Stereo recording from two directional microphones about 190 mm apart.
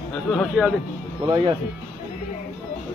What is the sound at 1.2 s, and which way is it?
Speech, 20° right (ahead or behind).